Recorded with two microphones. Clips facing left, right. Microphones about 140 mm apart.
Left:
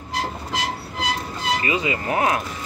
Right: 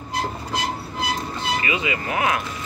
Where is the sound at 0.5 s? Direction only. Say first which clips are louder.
Right 1 dB; 90° left.